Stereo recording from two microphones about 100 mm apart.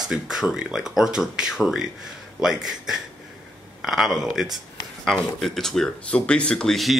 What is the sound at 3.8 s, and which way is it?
Speech, centre (ahead or behind).